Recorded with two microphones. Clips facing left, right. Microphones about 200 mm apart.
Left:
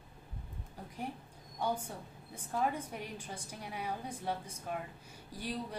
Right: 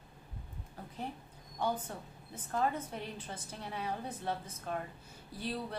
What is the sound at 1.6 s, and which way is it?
A woman's voice, 10° left (ahead or behind).